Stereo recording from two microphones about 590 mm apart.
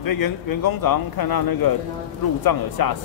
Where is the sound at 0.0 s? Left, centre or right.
Left.